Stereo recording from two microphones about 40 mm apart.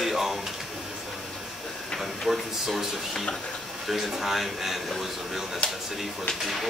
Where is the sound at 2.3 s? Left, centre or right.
Centre.